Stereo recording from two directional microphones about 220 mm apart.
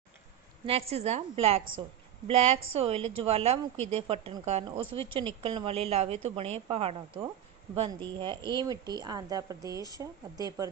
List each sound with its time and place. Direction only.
0.7 s speech: 25° right (ahead or behind)